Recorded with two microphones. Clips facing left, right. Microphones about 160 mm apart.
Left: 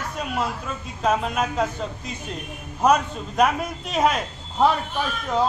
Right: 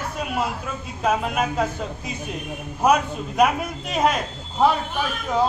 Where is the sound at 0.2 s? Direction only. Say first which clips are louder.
Right 1 dB; 5° right (ahead or behind).